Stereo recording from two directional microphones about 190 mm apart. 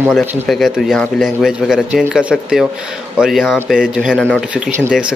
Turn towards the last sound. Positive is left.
turn(degrees=-5)  # may be behind; listen again after turning